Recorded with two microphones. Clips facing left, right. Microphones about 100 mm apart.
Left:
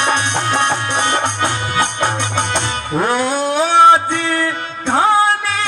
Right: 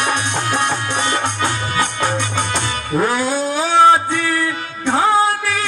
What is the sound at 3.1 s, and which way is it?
Cat, 65° left (ahead or behind).